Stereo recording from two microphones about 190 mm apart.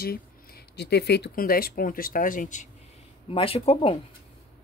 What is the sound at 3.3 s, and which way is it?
Speech, 30° left (ahead or behind).